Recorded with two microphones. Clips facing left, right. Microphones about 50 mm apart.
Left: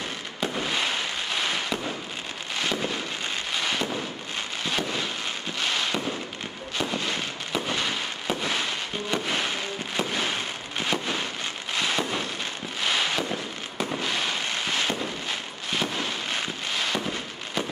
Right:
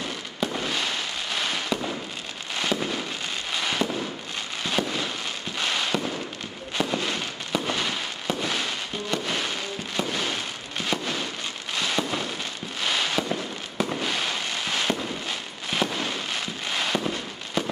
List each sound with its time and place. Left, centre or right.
0.6 s fireworks: centre
13.3 s fireworks: centre